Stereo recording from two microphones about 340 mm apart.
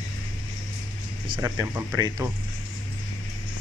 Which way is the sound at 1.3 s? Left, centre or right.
Centre.